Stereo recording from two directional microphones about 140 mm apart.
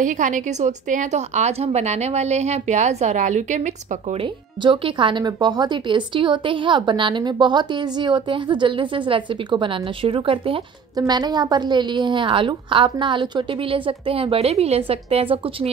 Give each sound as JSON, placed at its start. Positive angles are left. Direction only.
{"t": 0.0, "sound": "speech", "side_deg": -65}
{"t": 4.2, "sound": "speech", "side_deg": -35}
{"t": 11.0, "sound": "speech", "side_deg": -30}